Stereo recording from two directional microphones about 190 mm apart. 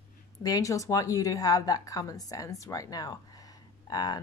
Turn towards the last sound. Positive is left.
turn(degrees=20)  # may be behind; listen again after turning